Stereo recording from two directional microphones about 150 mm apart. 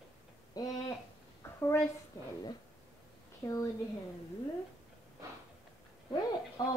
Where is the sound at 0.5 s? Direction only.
25° left (ahead or behind).